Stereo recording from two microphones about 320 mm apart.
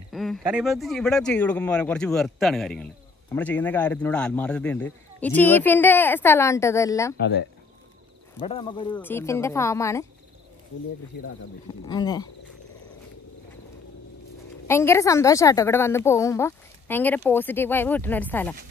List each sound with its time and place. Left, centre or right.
0.1 s speech: centre
7.2 s speech: left
8.4 s a woman's voice: centre
11.8 s a woman's voice: centre
14.7 s a woman's voice: centre